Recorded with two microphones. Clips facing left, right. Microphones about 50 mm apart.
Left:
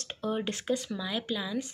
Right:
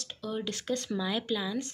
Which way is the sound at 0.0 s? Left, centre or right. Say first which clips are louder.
Left 3 dB; left.